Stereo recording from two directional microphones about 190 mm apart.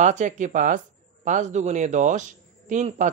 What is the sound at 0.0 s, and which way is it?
A man's voice, 40° right (ahead or behind).